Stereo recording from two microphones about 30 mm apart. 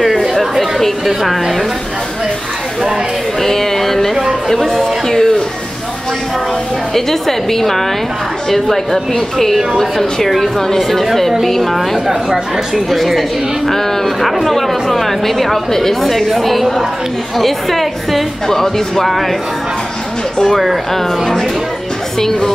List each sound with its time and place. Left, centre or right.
0.0 s chatter: centre
1.0 s speech: centre
3.4 s speech: centre
6.9 s speech: centre
12.1 s speech: centre
12.9 s speech: centre
20.5 s speech: centre
22.2 s a woman's voice: left